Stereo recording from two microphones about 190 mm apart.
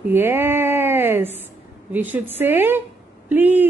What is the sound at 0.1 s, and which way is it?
A woman's voice, 10° right (ahead or behind).